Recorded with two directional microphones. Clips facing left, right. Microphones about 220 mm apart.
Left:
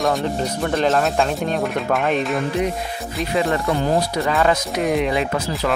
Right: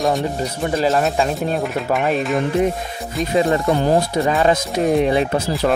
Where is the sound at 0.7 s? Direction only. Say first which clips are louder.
Right 1 dB; centre (ahead or behind).